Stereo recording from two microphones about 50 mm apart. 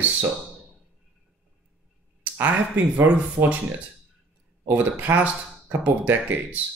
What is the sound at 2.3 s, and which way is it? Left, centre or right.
Speech, right.